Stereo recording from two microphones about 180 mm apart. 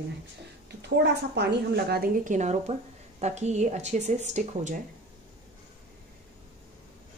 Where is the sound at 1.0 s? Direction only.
70° right (ahead or behind); by 4.8 s 40° right (ahead or behind).